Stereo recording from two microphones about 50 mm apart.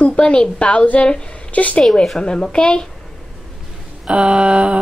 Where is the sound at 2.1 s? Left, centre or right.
Centre.